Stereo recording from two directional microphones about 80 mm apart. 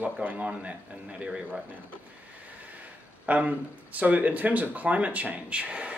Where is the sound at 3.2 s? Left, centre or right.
Centre.